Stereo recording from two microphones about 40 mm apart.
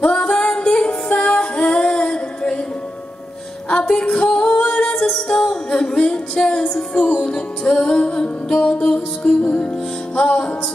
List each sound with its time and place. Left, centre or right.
0.0 s music: left
3.6 s a sound: left
4.1 s singing: centre
4.9 s music: centre